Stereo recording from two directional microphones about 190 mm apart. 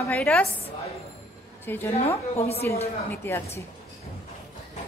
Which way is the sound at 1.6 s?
10° left (ahead or behind).